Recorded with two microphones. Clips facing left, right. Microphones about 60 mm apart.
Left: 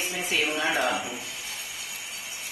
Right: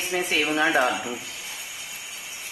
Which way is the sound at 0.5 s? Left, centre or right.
Right.